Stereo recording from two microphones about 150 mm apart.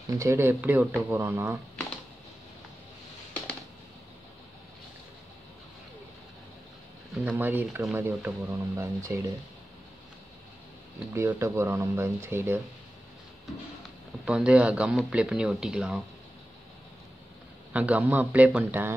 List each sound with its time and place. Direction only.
0.1 s speech: 20° right (ahead or behind)
7.2 s speech: 10° right (ahead or behind)
11.1 s speech: 20° right (ahead or behind)
14.2 s speech: 5° right (ahead or behind)
17.7 s speech: 10° right (ahead or behind)